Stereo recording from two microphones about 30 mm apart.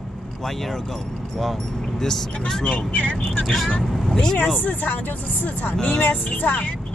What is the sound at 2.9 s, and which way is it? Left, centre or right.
Speech, left.